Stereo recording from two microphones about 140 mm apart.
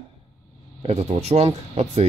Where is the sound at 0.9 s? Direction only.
50° right (ahead or behind).